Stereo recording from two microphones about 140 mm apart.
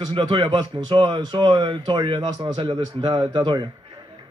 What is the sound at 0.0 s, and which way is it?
A man's voice, 35° right (ahead or behind).